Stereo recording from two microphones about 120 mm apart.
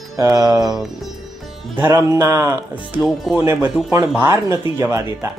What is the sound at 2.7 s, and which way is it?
Speech, 10° right (ahead or behind).